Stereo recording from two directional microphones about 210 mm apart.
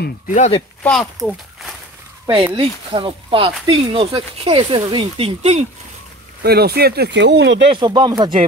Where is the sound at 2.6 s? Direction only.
25° right (ahead or behind).